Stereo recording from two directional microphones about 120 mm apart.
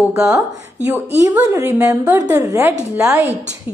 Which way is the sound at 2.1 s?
30° right (ahead or behind).